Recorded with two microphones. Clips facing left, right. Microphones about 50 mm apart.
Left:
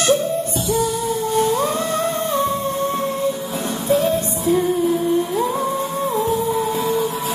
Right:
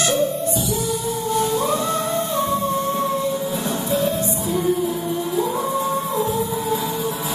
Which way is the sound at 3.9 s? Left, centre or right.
Left.